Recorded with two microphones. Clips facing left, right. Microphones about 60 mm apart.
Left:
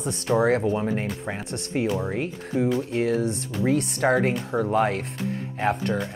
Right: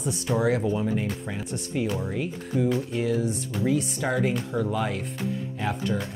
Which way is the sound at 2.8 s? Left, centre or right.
Left.